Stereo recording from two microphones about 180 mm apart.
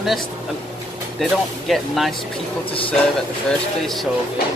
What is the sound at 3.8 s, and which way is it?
Speech, centre (ahead or behind).